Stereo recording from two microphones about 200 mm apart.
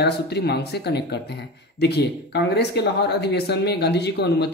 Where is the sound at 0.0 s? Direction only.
55° left (ahead or behind).